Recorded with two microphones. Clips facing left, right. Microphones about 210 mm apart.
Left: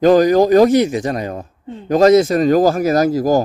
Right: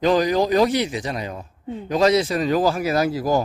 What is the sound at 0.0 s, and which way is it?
A man's voice, 45° left (ahead or behind).